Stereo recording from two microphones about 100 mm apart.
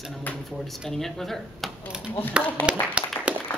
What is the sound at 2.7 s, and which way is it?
Speech, 10° right (ahead or behind).